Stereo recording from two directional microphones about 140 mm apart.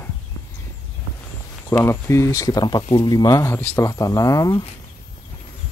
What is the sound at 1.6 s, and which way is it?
Speech, 15° left (ahead or behind).